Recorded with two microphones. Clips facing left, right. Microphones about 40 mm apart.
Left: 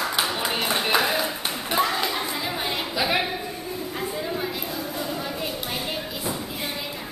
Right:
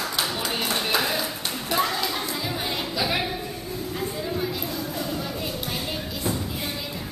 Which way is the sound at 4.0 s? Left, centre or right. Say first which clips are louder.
Even; centre.